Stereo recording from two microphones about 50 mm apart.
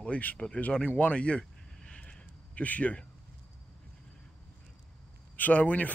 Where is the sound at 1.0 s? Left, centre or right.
Left.